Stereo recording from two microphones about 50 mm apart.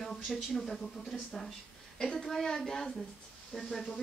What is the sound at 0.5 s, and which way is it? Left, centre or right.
Speech, centre.